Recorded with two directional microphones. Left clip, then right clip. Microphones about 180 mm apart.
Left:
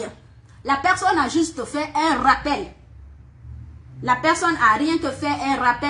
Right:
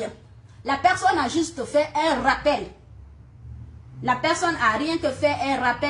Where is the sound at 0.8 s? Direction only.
15° right (ahead or behind).